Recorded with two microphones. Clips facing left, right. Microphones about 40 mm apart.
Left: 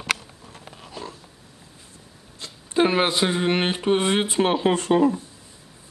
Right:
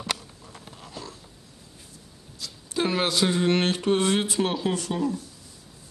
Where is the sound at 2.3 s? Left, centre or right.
Left.